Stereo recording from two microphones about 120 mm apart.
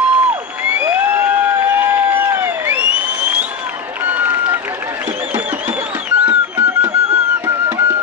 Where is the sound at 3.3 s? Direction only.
10° right (ahead or behind).